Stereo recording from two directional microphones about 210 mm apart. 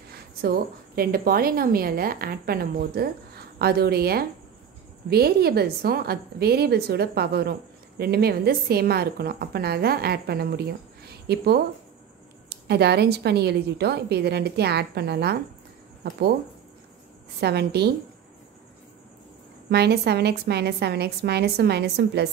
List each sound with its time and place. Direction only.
0.1 s a woman's voice: 45° right (ahead or behind)
17.4 s a woman's voice: 50° right (ahead or behind)
19.7 s a woman's voice: 50° right (ahead or behind)